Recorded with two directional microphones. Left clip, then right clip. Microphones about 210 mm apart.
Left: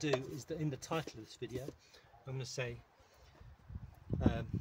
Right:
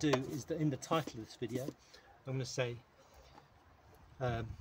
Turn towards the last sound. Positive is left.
turn(degrees=-5)  # may be behind; listen again after turning